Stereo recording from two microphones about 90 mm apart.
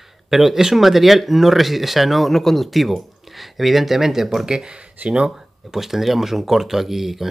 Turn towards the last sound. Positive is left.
turn(degrees=0)  # may be behind; listen again after turning